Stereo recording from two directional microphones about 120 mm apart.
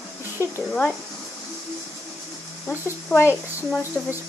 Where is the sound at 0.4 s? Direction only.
20° right (ahead or behind).